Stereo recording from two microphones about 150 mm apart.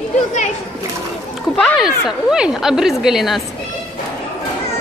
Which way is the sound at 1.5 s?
Centre (ahead or behind).